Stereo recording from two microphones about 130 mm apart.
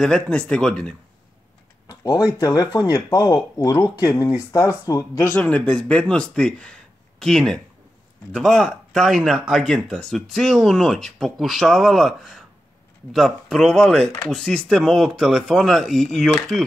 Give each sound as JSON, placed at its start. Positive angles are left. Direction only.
{"t": 0.0, "sound": "speech", "side_deg": 5}
{"t": 1.9, "sound": "a sound", "side_deg": 30}
{"t": 2.3, "sound": "speech", "side_deg": 30}
{"t": 5.4, "sound": "speech", "side_deg": 10}